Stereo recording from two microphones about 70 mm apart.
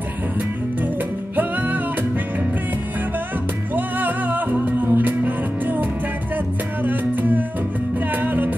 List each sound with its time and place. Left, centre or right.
1.3 s music: right
3.7 s music: right